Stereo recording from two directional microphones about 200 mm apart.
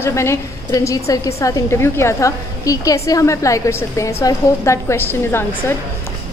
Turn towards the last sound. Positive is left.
turn(degrees=10)  # may be behind; listen again after turning